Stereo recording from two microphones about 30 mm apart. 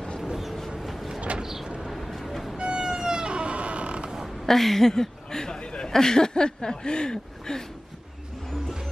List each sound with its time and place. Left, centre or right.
0.7 s vehicle: centre
1.4 s vehicle: centre
1.9 s a sound: centre
2.5 s music: right
2.8 s vehicle: right
4.5 s speech: centre
5.6 s chuckle: left
5.9 s a sound: centre